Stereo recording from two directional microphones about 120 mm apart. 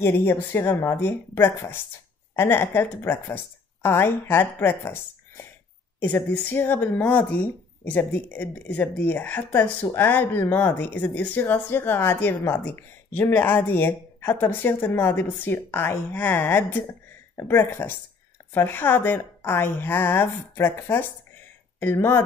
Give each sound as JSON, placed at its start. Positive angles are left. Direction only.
{"t": 0.0, "sound": "a woman's voice", "side_deg": 20}